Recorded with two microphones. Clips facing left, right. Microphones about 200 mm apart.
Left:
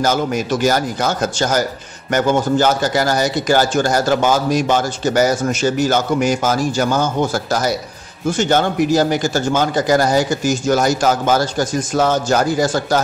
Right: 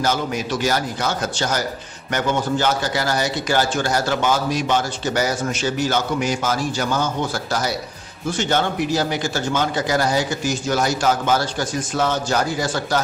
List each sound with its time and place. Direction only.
0.0 s a man's voice: 45° left (ahead or behind)